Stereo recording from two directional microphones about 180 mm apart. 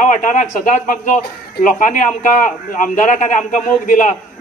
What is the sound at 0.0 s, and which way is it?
Speech, 45° left (ahead or behind).